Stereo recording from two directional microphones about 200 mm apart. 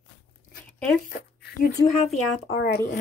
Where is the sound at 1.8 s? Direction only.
65° left (ahead or behind).